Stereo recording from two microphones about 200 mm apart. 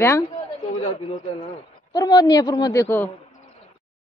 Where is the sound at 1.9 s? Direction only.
20° left (ahead or behind).